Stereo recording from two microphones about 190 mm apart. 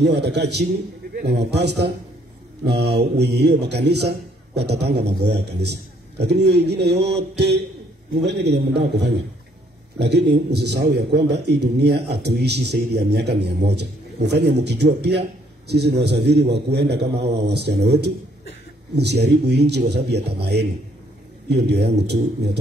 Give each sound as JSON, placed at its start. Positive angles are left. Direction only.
{"t": 0.0, "sound": "a man's voice", "side_deg": -60}